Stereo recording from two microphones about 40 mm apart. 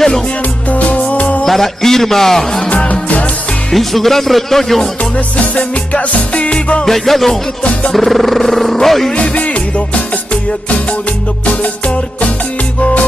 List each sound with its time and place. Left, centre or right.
0.7 s music: left
1.4 s a man's voice: centre
2.9 s music: left
3.7 s speech: centre
5.1 s music: left
6.8 s music: centre
7.9 s speech: centre
8.7 s music: centre
9.3 s music: left